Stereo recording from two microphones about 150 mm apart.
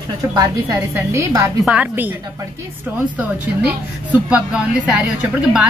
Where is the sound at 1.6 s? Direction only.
10° right (ahead or behind).